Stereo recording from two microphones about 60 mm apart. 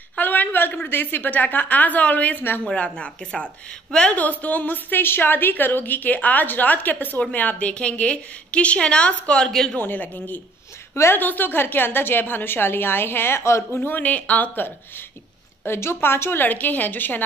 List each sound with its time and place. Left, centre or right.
0.2 s a sound: left
0.8 s a woman's voice: left; by 4.2 s centre
4.2 s a woman's voice: left
9.5 s speech: centre
9.8 s a woman's voice: left
13.7 s a woman's voice: left
15.6 s a woman's voice: left